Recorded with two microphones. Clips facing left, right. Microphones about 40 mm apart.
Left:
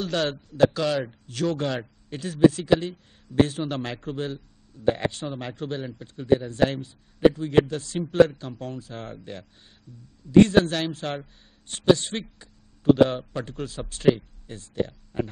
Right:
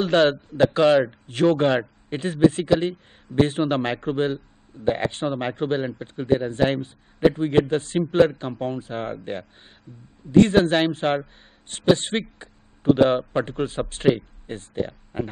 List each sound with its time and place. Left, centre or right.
0.0 s a man's voice: right
10.6 s a man's voice: right